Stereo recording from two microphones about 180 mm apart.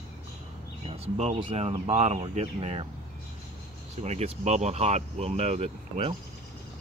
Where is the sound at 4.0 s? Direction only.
35° right (ahead or behind).